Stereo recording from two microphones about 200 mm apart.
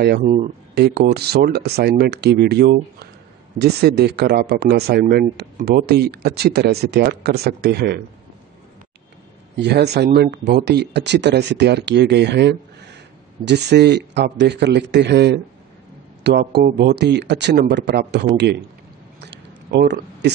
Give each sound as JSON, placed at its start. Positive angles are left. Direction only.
{"t": 0.2, "sound": "speech", "side_deg": -35}
{"t": 0.7, "sound": "speech", "side_deg": -55}
{"t": 9.6, "sound": "speech", "side_deg": -55}
{"t": 19.2, "sound": "a sound", "side_deg": -60}